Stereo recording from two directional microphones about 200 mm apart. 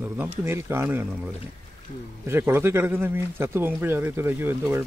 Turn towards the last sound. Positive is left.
turn(degrees=-10)  # may be behind; listen again after turning